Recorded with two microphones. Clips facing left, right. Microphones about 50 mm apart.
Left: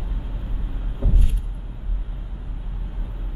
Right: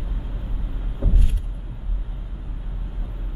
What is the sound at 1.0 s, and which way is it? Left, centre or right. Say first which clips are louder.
Vehicle: even; centre.